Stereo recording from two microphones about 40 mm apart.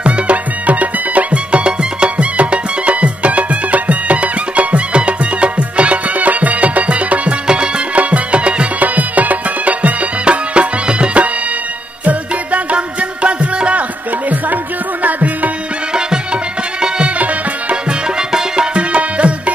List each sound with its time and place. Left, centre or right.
0.0 s music: right
8.8 s music: right
15.0 s music: right
18.8 s music: right